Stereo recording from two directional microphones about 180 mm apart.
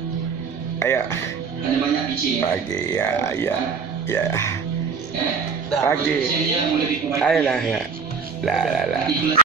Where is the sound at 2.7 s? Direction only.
15° left (ahead or behind).